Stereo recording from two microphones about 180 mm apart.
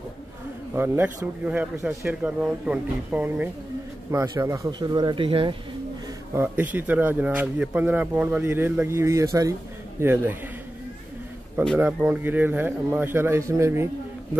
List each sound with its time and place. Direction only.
0.7 s a man's voice: 15° right (ahead or behind); by 5.6 s 30° right (ahead or behind)
6.3 s speech: 10° right (ahead or behind)
11.8 s speech: 10° right (ahead or behind)